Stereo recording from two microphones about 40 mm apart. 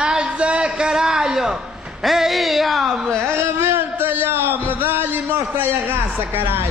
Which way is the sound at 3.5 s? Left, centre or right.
Right.